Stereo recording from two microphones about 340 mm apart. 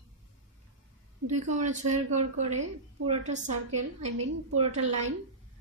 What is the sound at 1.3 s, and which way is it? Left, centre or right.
A woman's voice, right.